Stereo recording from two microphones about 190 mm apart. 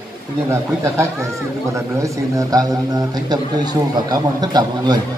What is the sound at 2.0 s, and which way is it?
A man's voice, 20° right (ahead or behind).